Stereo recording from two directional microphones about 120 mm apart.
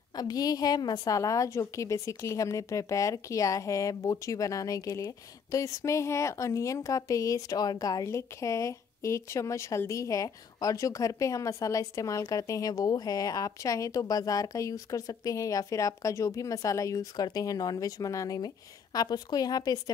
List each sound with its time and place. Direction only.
0.1 s a woman's voice: 35° left (ahead or behind)